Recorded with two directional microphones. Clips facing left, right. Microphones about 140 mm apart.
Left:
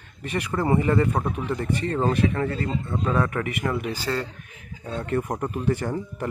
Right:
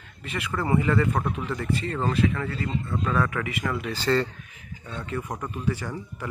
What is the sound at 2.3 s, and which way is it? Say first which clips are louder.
Speech: left 4 dB; 45° left (ahead or behind).